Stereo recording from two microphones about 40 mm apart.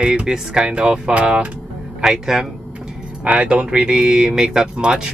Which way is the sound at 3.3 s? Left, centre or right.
Right.